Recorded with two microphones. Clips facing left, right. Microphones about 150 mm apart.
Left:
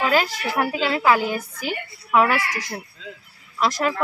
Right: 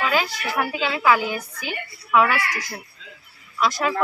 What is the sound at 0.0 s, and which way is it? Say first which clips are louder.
Speech: left 2 dB; 35° left (ahead or behind).